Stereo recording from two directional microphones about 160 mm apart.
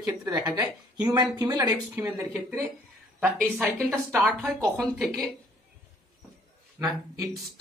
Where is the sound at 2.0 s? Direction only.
10° right (ahead or behind).